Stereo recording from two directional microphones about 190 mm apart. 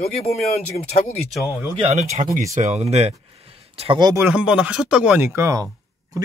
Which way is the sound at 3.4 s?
30° right (ahead or behind).